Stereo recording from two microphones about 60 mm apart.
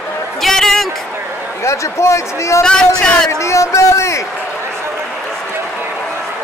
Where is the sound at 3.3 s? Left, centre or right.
Left.